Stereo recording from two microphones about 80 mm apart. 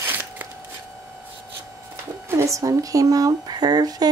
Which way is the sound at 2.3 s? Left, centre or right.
Right.